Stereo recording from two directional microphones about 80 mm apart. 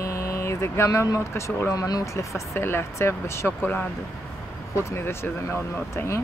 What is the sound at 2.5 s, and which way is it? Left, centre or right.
Speech, left.